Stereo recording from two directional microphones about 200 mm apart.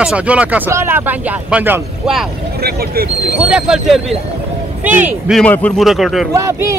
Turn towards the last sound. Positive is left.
turn(degrees=-15)  # may be behind; listen again after turning